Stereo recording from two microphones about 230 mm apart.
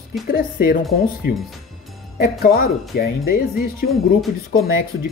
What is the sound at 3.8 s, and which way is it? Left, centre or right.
Speech, centre.